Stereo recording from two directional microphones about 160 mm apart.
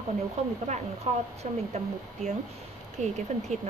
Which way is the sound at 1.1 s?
45° right (ahead or behind).